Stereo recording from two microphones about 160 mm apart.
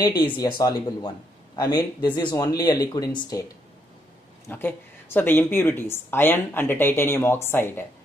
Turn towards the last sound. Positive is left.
turn(degrees=15)  # may be behind; listen again after turning